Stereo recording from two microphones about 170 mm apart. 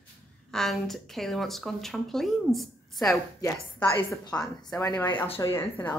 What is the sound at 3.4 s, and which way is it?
Speech, 20° left (ahead or behind).